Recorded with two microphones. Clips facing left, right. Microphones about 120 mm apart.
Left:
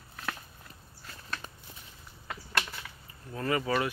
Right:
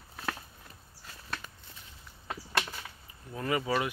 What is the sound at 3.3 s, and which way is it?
Speech, 10° right (ahead or behind).